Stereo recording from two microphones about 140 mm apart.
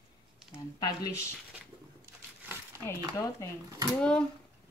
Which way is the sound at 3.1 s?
25° left (ahead or behind).